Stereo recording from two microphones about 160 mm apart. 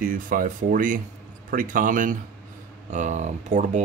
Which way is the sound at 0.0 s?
60° right (ahead or behind).